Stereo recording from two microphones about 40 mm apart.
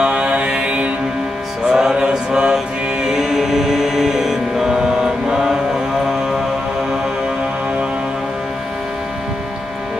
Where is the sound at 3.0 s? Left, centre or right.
Centre.